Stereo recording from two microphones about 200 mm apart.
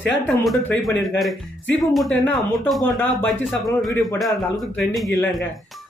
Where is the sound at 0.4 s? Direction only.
Centre (ahead or behind).